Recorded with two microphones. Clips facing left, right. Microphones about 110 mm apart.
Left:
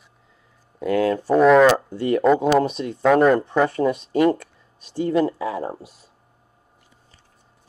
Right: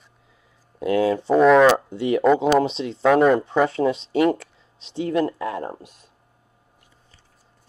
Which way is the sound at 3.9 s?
90° right.